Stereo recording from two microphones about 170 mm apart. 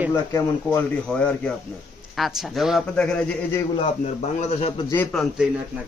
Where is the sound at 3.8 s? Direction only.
40° left (ahead or behind).